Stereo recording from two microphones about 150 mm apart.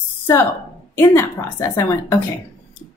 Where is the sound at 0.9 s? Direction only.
15° left (ahead or behind).